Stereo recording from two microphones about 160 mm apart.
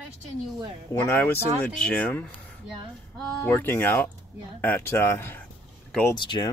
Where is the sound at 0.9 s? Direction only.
15° left (ahead or behind).